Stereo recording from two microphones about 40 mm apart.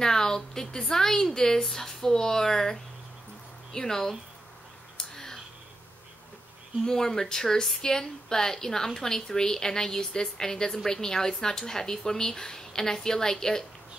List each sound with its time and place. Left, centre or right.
0.0 s speech: centre
4.9 s a sound: centre
6.8 s speech: centre